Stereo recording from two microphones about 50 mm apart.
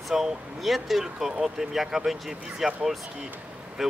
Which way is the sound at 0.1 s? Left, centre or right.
Centre.